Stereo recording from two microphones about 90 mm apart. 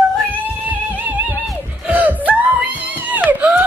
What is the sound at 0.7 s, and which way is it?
Music, 20° right (ahead or behind).